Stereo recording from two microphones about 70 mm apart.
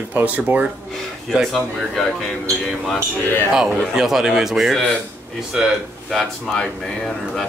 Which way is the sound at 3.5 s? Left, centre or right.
Centre.